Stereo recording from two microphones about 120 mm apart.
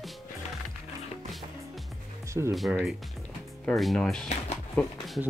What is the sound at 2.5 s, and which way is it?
Speech, centre (ahead or behind).